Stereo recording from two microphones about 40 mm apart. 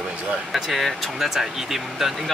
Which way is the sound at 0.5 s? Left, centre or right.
Centre.